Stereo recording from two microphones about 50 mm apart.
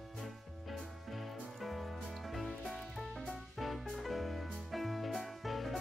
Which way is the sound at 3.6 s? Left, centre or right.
Centre.